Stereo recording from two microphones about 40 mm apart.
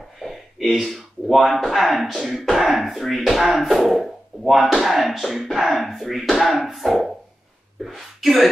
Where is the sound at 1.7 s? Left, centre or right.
Centre.